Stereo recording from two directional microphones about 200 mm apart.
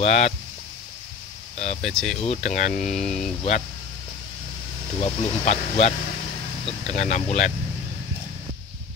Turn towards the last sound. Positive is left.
turn(degrees=35)  # may be behind; listen again after turning